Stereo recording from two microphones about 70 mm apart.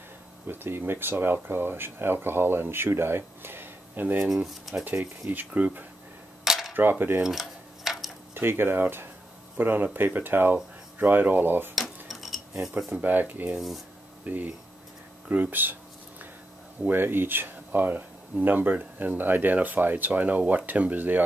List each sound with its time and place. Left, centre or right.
0.5 s speech: right
5.3 s speech: right
6.4 s camera: centre
6.7 s cutlery: right
7.2 s dishes: centre
8.4 s speech: right
11.7 s cutlery: centre
13.0 s speech: right
16.8 s speech: right